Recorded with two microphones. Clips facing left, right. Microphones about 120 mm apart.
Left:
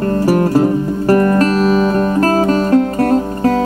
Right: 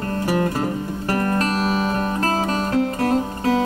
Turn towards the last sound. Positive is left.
turn(degrees=50)  # may be behind; listen again after turning